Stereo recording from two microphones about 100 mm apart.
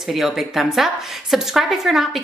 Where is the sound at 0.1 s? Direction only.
5° right (ahead or behind).